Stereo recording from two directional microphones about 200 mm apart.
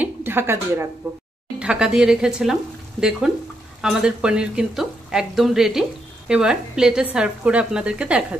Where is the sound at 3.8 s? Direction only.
5° right (ahead or behind).